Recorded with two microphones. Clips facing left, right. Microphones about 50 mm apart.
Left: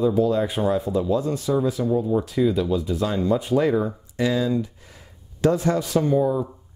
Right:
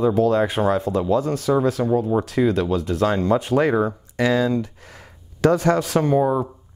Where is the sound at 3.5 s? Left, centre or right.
Right.